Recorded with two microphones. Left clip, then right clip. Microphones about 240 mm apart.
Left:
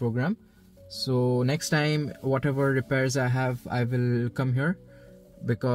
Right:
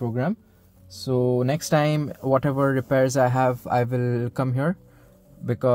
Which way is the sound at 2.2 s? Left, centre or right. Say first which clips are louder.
Right 5 dB; right.